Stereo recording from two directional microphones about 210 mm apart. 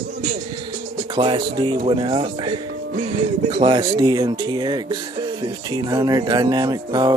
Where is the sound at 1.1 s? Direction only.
25° right (ahead or behind).